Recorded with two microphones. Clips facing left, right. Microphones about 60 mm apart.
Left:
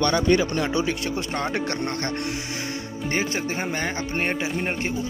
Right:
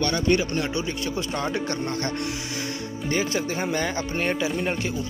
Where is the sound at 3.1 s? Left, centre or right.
Left.